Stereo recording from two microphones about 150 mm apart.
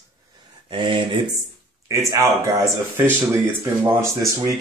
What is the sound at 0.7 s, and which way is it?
Speech, 35° right (ahead or behind).